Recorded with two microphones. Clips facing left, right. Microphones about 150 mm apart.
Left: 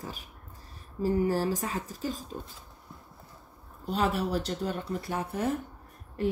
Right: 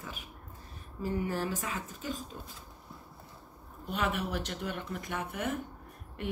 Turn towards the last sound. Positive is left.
turn(degrees=35)  # may be behind; listen again after turning